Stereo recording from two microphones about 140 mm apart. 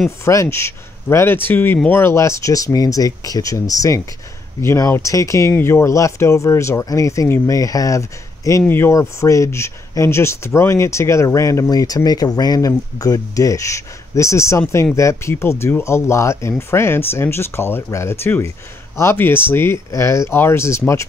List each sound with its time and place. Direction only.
0.2 s speech: 20° left (ahead or behind)